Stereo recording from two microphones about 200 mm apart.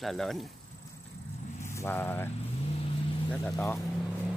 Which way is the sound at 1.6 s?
10° left (ahead or behind).